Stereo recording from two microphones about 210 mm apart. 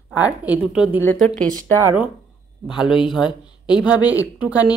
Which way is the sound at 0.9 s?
10° left (ahead or behind).